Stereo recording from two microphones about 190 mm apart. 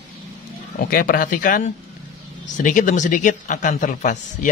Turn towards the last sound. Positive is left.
turn(degrees=40)  # may be behind; listen again after turning